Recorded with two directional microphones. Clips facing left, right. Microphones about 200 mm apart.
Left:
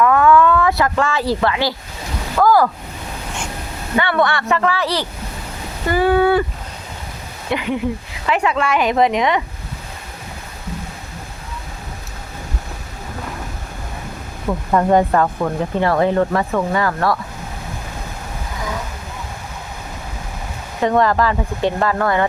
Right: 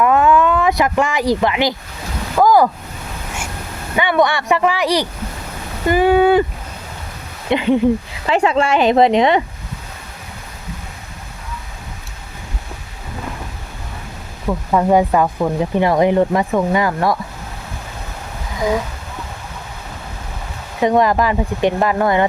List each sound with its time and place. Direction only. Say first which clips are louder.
0.0 s speech: left 1 dB; 20° right (ahead or behind)
3.9 s speech: right 2 dB; 15° right (ahead or behind)
7.5 s a woman's voice: right 7 dB; 25° right (ahead or behind)
14.7 s speech: right 1 dB; 5° right (ahead or behind)
20.8 s speech: right 1 dB; 15° right (ahead or behind)